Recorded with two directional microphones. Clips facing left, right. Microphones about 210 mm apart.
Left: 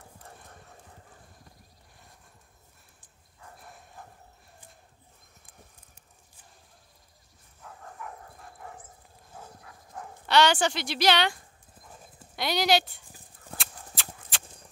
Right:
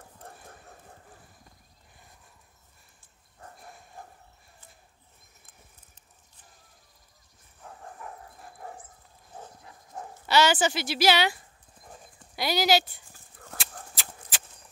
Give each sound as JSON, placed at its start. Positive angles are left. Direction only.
{"t": 8.0, "sound": "dog", "side_deg": -35}
{"t": 10.2, "sound": "a woman's voice", "side_deg": -5}
{"t": 12.4, "sound": "speech", "side_deg": 0}
{"t": 13.6, "sound": "horse", "side_deg": 0}